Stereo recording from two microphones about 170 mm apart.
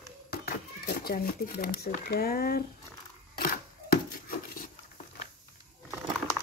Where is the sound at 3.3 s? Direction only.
60° left (ahead or behind).